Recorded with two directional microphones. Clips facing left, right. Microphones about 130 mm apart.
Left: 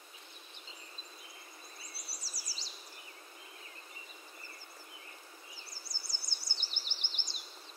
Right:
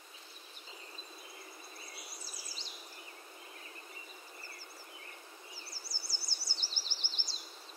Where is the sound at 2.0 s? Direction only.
35° left (ahead or behind).